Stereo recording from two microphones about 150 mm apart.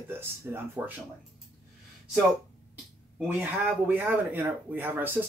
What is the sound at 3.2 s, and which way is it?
Speech, 10° right (ahead or behind).